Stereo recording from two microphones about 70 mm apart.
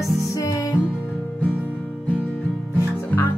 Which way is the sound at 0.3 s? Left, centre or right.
Left.